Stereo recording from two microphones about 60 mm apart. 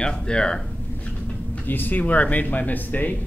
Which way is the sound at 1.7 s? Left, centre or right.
Left.